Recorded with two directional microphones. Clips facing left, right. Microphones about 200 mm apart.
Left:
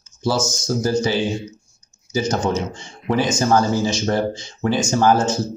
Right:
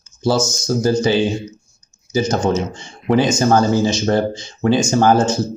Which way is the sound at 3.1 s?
25° right (ahead or behind).